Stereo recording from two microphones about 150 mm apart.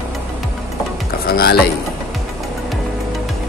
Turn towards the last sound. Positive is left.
turn(degrees=90)